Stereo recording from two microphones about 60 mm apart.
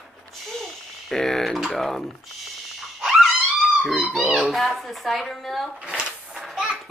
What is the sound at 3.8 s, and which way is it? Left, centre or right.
Speech, centre.